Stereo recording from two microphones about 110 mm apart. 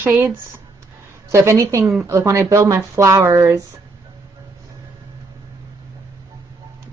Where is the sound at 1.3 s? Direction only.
25° right (ahead or behind).